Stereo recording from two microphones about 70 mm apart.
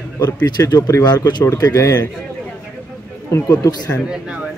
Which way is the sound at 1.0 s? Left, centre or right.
Left.